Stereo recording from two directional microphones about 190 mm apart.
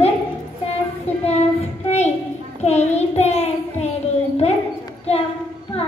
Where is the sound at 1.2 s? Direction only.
35° left (ahead or behind).